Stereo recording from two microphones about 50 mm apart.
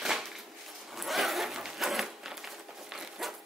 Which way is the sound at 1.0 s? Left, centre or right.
Centre.